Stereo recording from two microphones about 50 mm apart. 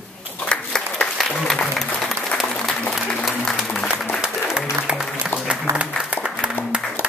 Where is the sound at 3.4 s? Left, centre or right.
Centre.